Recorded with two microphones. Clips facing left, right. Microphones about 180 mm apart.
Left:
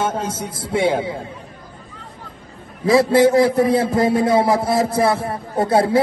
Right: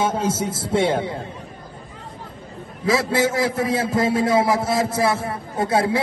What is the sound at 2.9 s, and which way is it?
A man's voice, 25° left (ahead or behind).